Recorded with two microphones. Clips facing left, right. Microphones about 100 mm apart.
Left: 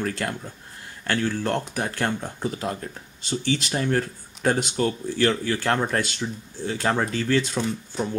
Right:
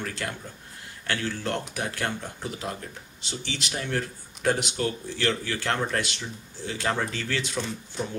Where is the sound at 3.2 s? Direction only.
45° left (ahead or behind).